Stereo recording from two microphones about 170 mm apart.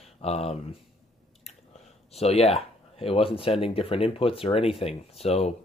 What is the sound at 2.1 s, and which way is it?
Speech, 35° left (ahead or behind).